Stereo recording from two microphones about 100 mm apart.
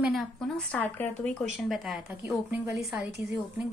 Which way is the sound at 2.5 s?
25° right (ahead or behind).